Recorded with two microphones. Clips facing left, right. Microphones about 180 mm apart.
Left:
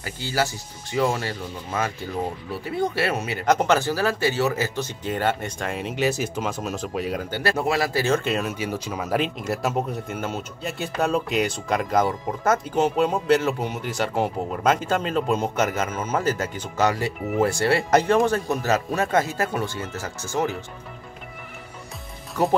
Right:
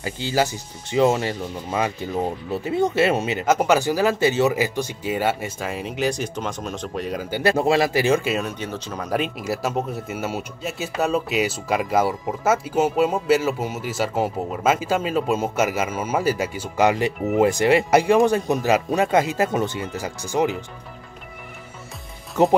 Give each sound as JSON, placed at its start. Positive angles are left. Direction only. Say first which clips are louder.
{"t": 0.0, "sound": "speech", "louder": "right 3 dB", "side_deg": -20}
{"t": 3.4, "sound": "speech", "louder": "right 1 dB", "side_deg": -10}
{"t": 7.2, "sound": "speech", "louder": "right 8 dB", "side_deg": -15}
{"t": 8.3, "sound": "speech", "louder": "even", "side_deg": 0}
{"t": 22.3, "sound": "speech", "louder": "right 5 dB", "side_deg": -25}